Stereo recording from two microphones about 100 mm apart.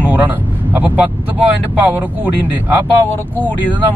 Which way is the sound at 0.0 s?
20° right (ahead or behind).